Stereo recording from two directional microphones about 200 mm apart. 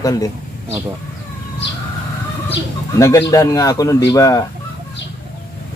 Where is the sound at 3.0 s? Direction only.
15° left (ahead or behind).